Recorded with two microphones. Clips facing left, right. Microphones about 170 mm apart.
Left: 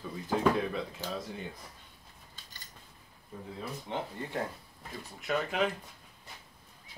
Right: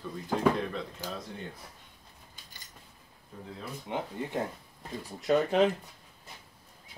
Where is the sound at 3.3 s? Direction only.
10° left (ahead or behind).